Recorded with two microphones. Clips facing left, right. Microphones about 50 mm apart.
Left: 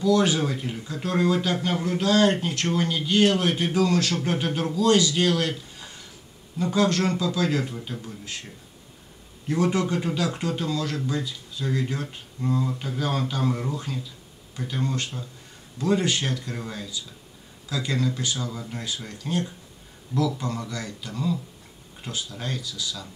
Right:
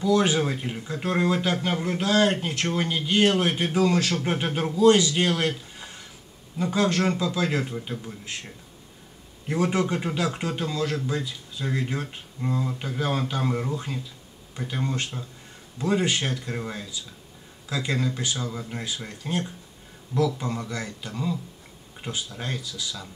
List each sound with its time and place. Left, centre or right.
0.0 s speech: right
6.6 s speech: centre
9.5 s speech: right